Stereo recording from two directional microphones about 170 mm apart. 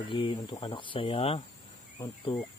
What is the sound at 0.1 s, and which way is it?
Speech, 30° left (ahead or behind).